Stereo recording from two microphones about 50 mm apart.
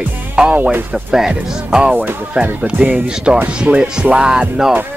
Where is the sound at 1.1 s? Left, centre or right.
Centre.